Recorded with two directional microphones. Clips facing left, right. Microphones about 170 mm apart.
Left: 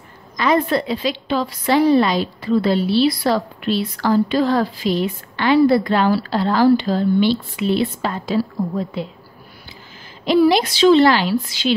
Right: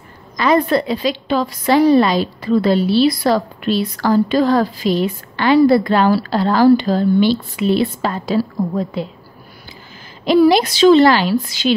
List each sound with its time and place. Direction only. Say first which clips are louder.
0.4 s a woman's voice: right 3 dB; 40° right (ahead or behind)
10.2 s a woman's voice: right 3 dB; 40° right (ahead or behind)